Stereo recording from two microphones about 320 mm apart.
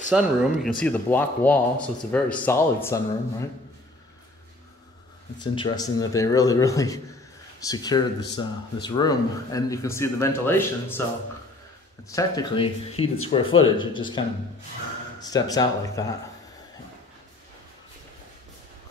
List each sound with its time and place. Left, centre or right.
0.1 s speech: centre
5.4 s speech: centre
12.1 s speech: centre